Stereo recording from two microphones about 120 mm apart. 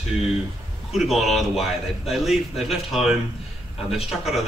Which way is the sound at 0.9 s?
Centre (ahead or behind).